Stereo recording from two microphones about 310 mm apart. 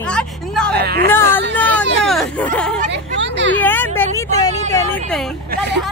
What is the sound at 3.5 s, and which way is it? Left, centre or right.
Speech, centre.